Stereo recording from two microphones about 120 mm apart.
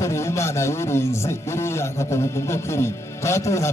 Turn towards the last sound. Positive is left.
turn(degrees=25)  # may be behind; listen again after turning